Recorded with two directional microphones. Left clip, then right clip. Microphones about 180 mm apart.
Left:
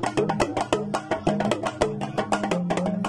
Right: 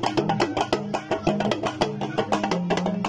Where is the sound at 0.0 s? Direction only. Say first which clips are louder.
Right 1 dB; centre (ahead or behind).